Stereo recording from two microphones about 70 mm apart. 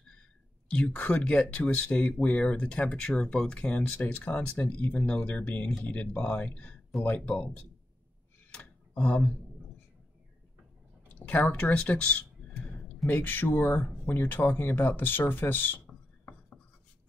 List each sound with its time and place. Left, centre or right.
0.7 s speech: centre
11.1 s speech: left
13.0 s speech: left